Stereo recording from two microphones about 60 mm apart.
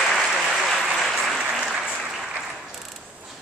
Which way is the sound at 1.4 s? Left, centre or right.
Centre.